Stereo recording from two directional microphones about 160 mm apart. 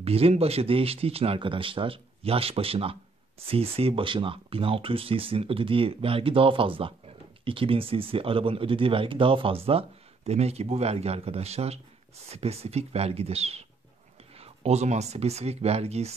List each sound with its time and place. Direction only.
0.0 s speech: 40° right (ahead or behind)